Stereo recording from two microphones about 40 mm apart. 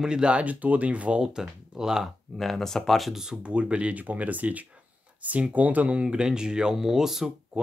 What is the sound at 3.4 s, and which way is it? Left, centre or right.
Speech, right.